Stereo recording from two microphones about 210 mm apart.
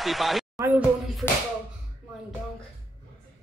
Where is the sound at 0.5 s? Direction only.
10° right (ahead or behind).